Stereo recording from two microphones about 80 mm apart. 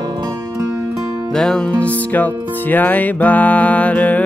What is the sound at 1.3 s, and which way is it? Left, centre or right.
Music, centre.